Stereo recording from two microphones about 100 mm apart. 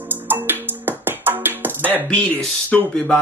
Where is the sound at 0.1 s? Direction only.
20° right (ahead or behind).